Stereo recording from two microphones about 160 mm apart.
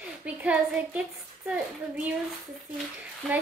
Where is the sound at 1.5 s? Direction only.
5° right (ahead or behind).